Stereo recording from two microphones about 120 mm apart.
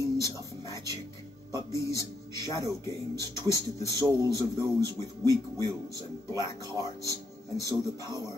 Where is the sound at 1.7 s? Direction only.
25° left (ahead or behind).